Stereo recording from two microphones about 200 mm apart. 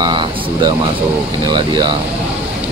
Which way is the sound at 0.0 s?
20° right (ahead or behind).